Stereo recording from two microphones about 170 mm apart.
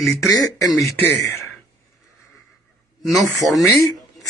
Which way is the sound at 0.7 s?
20° left (ahead or behind).